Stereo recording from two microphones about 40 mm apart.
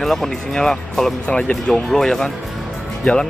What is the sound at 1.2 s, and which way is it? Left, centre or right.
Speech, left.